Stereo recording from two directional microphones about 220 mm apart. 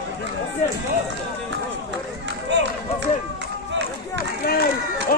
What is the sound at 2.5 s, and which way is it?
Run, 50° right (ahead or behind).